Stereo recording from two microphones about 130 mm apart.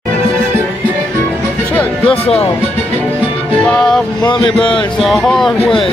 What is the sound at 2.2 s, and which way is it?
Speech, 50° left (ahead or behind).